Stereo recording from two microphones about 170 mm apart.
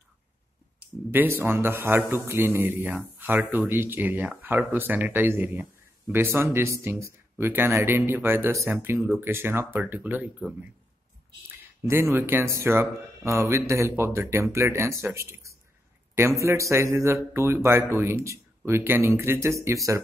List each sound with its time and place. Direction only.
1.1 s speech: 15° right (ahead or behind)
11.8 s speech: 15° right (ahead or behind)